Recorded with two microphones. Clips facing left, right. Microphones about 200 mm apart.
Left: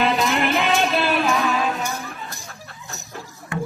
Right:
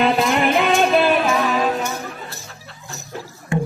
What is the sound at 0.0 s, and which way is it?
Music, 50° right (ahead or behind).